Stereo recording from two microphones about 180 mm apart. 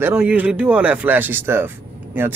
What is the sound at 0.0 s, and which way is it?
A man's voice, 5° right (ahead or behind).